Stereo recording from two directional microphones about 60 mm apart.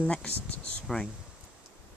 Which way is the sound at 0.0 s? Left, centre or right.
Left.